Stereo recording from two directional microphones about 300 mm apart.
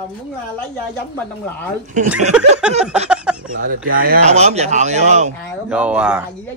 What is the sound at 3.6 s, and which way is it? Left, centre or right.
Speech, right.